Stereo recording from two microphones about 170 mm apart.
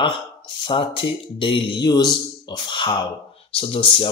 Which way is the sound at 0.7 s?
30° left (ahead or behind).